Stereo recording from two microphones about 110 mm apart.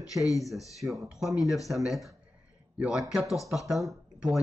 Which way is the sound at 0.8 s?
15° right (ahead or behind).